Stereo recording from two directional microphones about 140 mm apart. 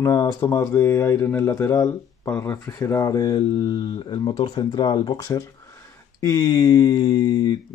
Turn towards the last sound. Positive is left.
turn(degrees=30)  # may be behind; listen again after turning